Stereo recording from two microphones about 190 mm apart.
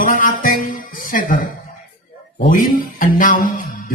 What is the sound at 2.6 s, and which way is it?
Music, 45° left (ahead or behind).